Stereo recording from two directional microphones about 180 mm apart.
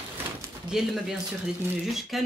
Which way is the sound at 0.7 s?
Centre (ahead or behind).